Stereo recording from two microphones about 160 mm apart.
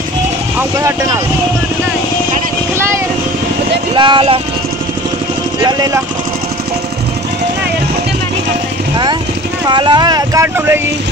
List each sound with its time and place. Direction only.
0.7 s speech: 20° right (ahead or behind)
3.9 s speech: 30° right (ahead or behind)
5.6 s speech: 25° right (ahead or behind)
9.7 s speech: 30° right (ahead or behind)